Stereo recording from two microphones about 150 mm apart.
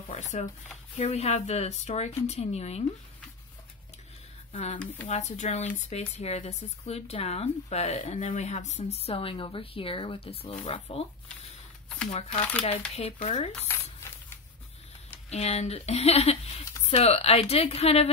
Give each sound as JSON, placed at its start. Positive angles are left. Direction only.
{"t": 0.2, "sound": "speech", "side_deg": 50}
{"t": 4.5, "sound": "speech", "side_deg": 45}
{"t": 12.1, "sound": "speech", "side_deg": 45}
{"t": 15.2, "sound": "speech", "side_deg": 45}